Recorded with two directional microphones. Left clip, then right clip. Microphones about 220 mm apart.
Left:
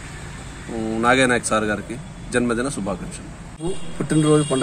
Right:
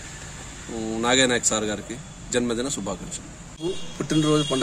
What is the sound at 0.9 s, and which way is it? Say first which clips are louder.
Speech: left 4 dB; centre (ahead or behind).